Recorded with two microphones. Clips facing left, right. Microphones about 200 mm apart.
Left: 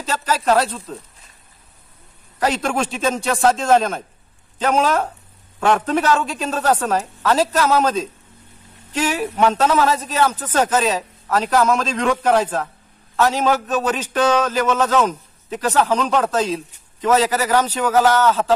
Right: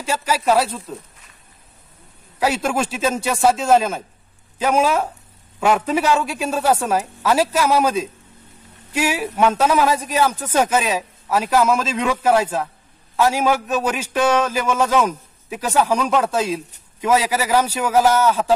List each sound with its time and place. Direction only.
0.0 s speech: 10° right (ahead or behind)
2.4 s speech: 5° right (ahead or behind)